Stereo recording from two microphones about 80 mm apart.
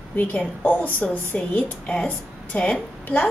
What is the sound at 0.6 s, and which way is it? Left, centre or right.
A woman's voice, left.